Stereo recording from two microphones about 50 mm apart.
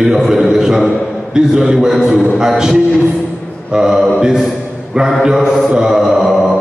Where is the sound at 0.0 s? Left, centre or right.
Centre.